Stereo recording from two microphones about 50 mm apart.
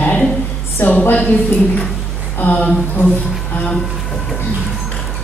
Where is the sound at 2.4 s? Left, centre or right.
Left.